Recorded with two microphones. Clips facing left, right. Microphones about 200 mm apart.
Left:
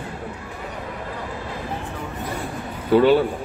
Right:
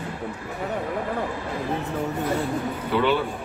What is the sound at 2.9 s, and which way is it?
Speech, 40° left (ahead or behind).